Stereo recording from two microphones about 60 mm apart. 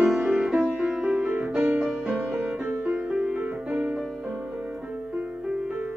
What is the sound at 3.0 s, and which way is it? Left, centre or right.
Music, centre.